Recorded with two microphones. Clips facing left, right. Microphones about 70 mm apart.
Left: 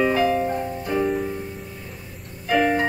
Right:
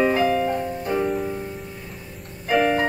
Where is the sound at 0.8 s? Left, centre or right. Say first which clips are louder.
Left 1 dB; centre.